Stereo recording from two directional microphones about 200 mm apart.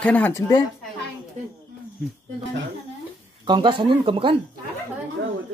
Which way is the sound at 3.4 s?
25° right (ahead or behind).